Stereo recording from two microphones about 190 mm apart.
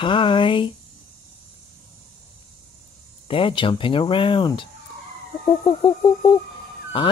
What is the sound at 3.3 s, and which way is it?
Speech, 25° left (ahead or behind).